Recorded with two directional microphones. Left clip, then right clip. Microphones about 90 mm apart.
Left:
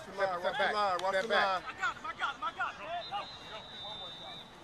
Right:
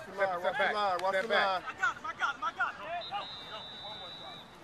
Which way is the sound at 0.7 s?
30° right (ahead or behind).